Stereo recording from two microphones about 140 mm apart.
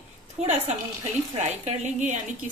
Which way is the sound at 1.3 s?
55° right (ahead or behind).